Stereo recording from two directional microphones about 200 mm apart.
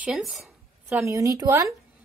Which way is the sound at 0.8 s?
15° right (ahead or behind).